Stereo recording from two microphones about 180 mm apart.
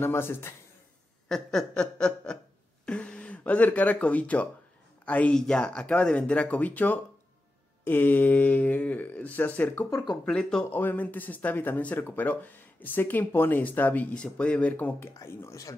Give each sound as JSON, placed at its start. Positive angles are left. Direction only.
{"t": 0.0, "sound": "speech", "side_deg": 15}
{"t": 1.3, "sound": "chuckle", "side_deg": 0}
{"t": 2.8, "sound": "a sound", "side_deg": 5}
{"t": 5.0, "sound": "speech", "side_deg": 10}
{"t": 10.2, "sound": "speech", "side_deg": 5}